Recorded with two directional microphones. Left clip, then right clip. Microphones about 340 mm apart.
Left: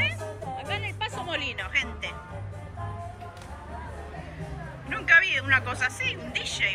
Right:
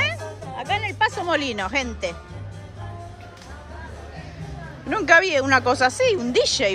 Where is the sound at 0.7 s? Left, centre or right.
Right.